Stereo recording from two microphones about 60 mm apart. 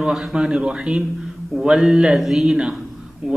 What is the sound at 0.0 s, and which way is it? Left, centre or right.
A man's voice, centre.